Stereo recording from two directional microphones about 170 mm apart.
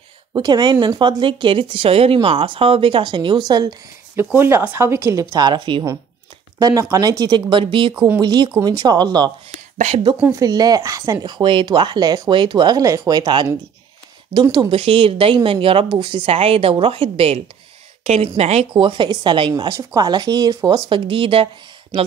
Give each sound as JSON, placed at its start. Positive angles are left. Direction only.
{"t": 0.3, "sound": "speech", "side_deg": -25}
{"t": 4.2, "sound": "speech", "side_deg": -15}
{"t": 6.6, "sound": "speech", "side_deg": -20}
{"t": 9.8, "sound": "speech", "side_deg": -40}
{"t": 10.3, "sound": "speech", "side_deg": -25}